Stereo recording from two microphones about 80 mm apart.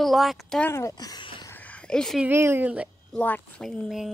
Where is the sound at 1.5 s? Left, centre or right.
Centre.